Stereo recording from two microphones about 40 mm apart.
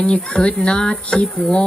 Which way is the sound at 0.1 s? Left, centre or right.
Left.